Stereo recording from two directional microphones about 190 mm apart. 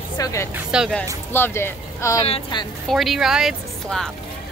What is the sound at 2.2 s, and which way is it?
Speech, 30° left (ahead or behind).